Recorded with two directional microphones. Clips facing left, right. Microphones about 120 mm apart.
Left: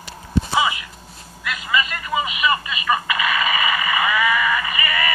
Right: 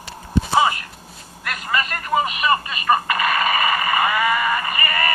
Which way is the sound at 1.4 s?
50° right (ahead or behind).